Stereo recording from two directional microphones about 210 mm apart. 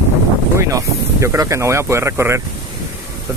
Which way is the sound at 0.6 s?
15° right (ahead or behind).